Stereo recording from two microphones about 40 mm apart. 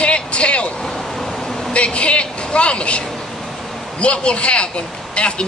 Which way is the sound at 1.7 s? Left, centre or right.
Left.